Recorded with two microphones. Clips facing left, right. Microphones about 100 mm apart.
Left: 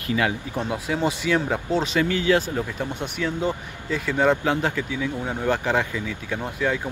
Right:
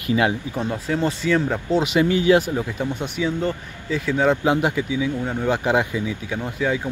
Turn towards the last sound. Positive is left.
turn(degrees=-5)  # may be behind; listen again after turning